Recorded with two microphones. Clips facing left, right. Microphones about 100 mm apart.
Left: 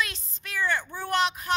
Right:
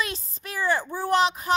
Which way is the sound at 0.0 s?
40° right (ahead or behind).